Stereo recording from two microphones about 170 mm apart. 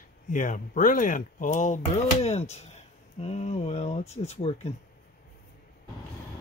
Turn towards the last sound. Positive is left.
turn(degrees=40)  # may be behind; listen again after turning